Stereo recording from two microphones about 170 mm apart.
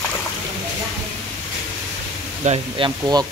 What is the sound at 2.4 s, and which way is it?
Speech, 40° right (ahead or behind).